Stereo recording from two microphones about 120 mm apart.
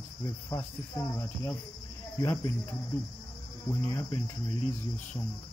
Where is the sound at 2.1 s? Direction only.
30° left (ahead or behind).